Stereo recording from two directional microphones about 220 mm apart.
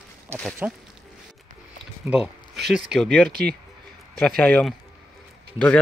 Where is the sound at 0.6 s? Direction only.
10° right (ahead or behind).